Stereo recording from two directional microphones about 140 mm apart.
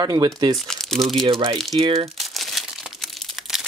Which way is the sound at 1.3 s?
35° right (ahead or behind).